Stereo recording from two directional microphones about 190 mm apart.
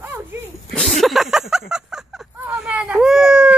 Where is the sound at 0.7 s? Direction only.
Centre (ahead or behind).